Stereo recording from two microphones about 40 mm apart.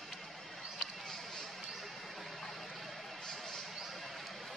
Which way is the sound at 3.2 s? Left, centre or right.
Centre.